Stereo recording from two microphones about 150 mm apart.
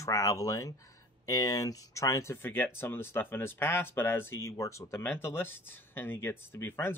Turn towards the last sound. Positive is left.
turn(degrees=15)  # may be behind; listen again after turning